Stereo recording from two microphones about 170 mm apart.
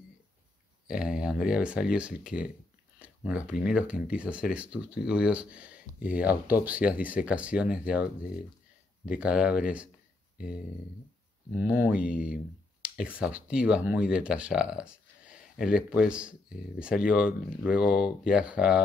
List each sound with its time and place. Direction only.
0.8 s speech: 5° right (ahead or behind)
3.0 s a sound: 5° right (ahead or behind)
3.6 s speech: 5° right (ahead or behind)
9.2 s speech: 5° right (ahead or behind)
10.3 s speech: 60° left (ahead or behind)
11.5 s speech: 10° right (ahead or behind)
12.1 s speech: 55° left (ahead or behind)
13.0 s speech: 5° right (ahead or behind)